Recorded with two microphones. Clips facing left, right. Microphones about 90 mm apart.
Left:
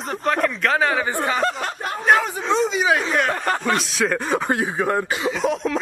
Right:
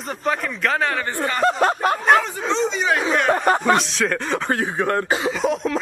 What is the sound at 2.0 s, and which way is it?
Speech, 5° left (ahead or behind).